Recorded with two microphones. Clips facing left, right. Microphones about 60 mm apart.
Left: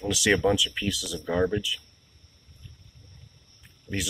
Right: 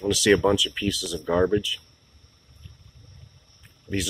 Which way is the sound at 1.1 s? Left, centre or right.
Centre.